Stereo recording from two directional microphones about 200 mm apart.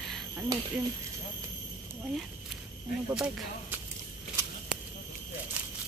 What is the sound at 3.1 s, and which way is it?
Speech, 5° right (ahead or behind).